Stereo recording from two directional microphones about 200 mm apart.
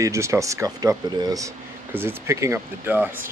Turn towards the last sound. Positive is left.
turn(degrees=-10)  # may be behind; listen again after turning